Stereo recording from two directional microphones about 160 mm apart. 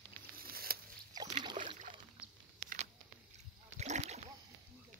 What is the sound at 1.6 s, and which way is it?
Rowboat, 45° right (ahead or behind).